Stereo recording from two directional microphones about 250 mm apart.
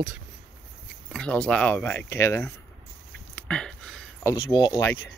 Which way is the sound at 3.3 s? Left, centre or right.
Centre.